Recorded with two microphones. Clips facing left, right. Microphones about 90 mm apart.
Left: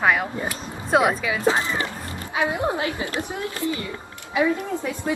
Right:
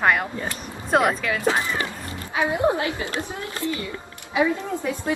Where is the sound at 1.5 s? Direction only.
20° left (ahead or behind).